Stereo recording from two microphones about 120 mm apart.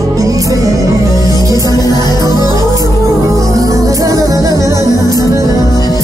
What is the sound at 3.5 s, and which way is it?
Music, 30° right (ahead or behind).